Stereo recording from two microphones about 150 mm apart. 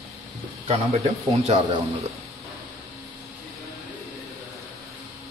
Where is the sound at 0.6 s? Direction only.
45° right (ahead or behind).